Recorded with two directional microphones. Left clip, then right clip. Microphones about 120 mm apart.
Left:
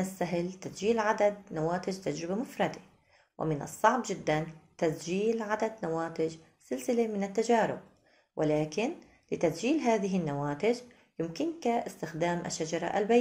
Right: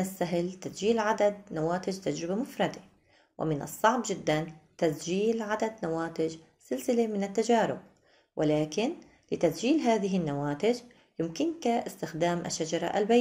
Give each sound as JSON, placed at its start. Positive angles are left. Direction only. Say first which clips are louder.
{"t": 0.0, "sound": "a woman's voice", "louder": "right 2 dB", "side_deg": -15}